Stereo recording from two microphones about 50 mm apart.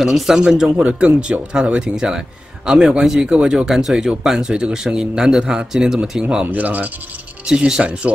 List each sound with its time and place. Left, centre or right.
0.0 s speech: centre
0.8 s speech: right
6.5 s speech: right
7.4 s speech: centre